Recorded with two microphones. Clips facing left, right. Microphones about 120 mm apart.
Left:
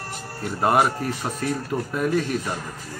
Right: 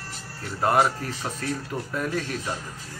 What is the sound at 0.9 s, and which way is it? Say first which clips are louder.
Speech: left 3 dB; 55° left (ahead or behind).